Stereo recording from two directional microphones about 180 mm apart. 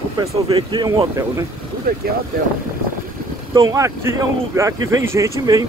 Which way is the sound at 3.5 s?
20° right (ahead or behind).